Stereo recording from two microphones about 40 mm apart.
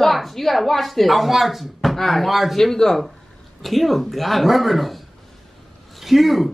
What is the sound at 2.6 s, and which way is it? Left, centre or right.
A woman's voice, centre.